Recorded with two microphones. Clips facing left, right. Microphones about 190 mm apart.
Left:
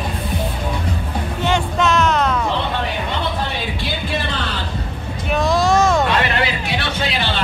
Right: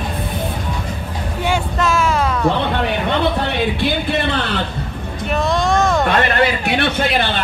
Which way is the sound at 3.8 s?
60° right (ahead or behind).